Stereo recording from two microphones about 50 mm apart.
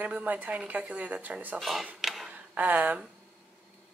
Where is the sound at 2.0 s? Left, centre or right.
Centre.